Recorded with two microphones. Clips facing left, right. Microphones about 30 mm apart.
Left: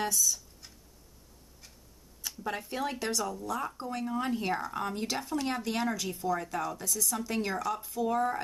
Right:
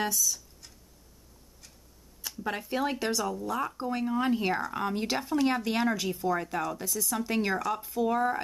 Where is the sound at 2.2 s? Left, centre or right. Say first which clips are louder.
Right 2 dB; centre.